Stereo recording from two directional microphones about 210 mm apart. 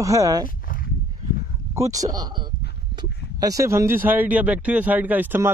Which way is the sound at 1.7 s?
15° right (ahead or behind).